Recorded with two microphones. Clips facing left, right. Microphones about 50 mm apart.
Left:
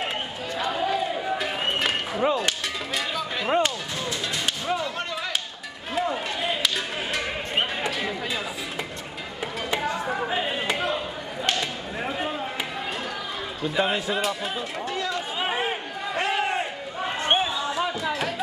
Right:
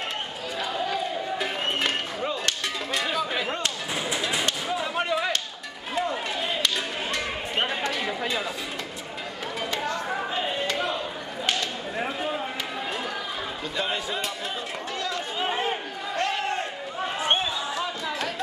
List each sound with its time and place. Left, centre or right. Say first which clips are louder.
0.7 s a sound: left 3 dB; centre
3.4 s music: left 7 dB; centre
4.7 s whip: right 3 dB; centre
5.9 s run: left 1 dB; centre
8.0 s chatter: right 1 dB; centre
9.8 s chatter: left 3 dB; centre
10.2 s a sound: left 2 dB; centre
11.4 s whip: left 1 dB; centre
13.7 s speech: left 5 dB; centre
15.0 s run: left 1 dB; centre
15.4 s a sound: even; centre